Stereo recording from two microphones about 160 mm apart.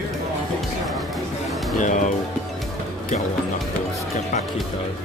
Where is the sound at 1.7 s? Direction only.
50° left (ahead or behind).